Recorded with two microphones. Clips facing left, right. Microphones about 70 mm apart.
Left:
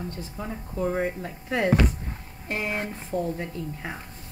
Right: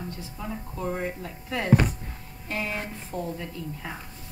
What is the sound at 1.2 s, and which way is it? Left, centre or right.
Speech, left.